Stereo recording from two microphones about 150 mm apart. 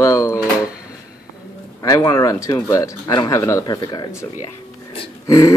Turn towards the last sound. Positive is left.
turn(degrees=20)  # may be behind; listen again after turning